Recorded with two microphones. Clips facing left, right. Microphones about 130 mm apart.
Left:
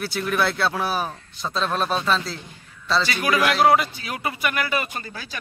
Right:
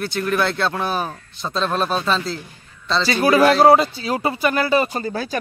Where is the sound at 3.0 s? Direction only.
35° right (ahead or behind).